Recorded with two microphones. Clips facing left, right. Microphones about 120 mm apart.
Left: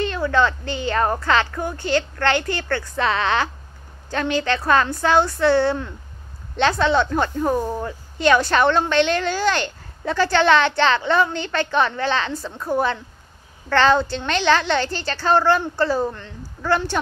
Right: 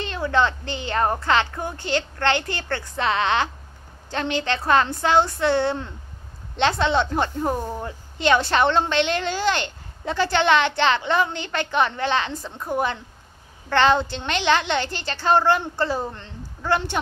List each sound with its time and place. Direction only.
0.0 s a woman's voice: 20° right (ahead or behind)